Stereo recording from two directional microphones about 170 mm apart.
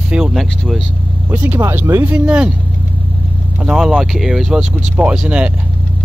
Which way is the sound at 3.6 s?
5° right (ahead or behind).